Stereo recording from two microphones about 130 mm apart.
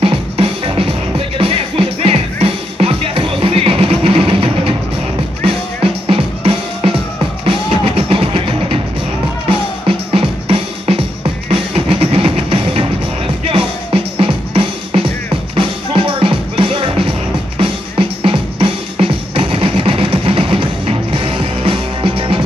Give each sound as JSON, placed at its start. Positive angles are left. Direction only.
{"t": 0.0, "sound": "music", "side_deg": -50}
{"t": 6.0, "sound": "music", "side_deg": -45}
{"t": 14.1, "sound": "music", "side_deg": -45}